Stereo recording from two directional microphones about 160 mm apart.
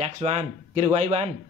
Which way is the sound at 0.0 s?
40° right (ahead or behind).